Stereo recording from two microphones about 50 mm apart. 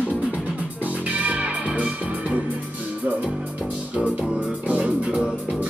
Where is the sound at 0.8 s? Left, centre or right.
Right.